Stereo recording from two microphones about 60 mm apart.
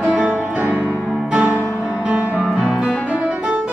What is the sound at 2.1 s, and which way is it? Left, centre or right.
Music, centre.